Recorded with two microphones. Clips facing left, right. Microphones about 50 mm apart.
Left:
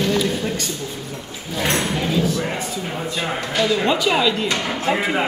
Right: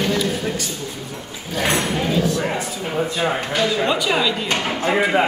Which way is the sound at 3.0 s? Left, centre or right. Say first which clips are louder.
Right 6 dB; centre.